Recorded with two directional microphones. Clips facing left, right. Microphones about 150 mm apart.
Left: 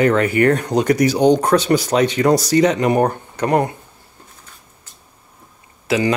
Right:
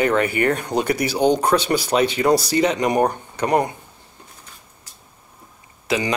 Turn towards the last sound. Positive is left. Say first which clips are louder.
# left 4 dB
turn(degrees=-20)  # may be behind; listen again after turning